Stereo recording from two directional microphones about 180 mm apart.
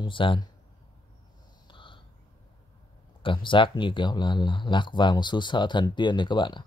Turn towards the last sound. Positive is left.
turn(degrees=25)  # may be behind; listen again after turning